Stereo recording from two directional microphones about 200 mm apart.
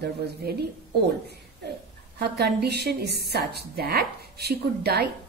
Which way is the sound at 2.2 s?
55° right (ahead or behind).